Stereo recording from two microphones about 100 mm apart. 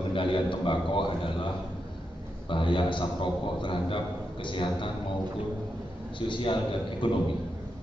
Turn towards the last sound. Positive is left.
turn(degrees=55)  # may be behind; listen again after turning